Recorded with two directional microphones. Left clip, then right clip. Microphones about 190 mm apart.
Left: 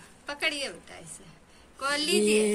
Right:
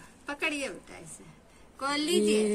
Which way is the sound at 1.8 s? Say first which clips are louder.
Left 2 dB; 55° right (ahead or behind).